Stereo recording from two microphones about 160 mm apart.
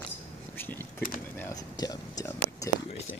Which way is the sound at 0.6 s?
15° left (ahead or behind).